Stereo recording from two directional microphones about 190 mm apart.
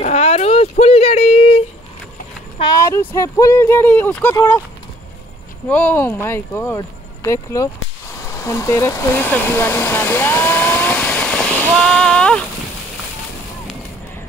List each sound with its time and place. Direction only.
0.0 s a sound: 35° left (ahead or behind)
2.6 s speech: 15° left (ahead or behind)
5.7 s speech: 10° left (ahead or behind)